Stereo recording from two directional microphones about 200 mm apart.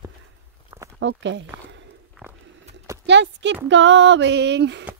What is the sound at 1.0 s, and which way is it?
Speech, 65° right (ahead or behind).